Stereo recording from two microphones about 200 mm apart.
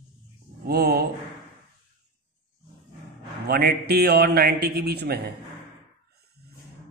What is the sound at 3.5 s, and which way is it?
A man's voice, 50° right (ahead or behind).